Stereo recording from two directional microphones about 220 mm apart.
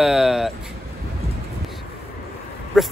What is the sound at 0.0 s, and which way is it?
Vehicle, centre (ahead or behind).